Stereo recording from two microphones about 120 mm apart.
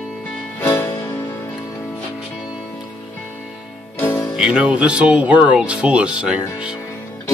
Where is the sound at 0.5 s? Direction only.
25° left (ahead or behind).